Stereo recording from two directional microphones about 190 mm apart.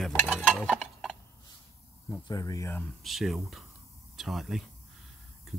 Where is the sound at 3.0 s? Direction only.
Centre (ahead or behind).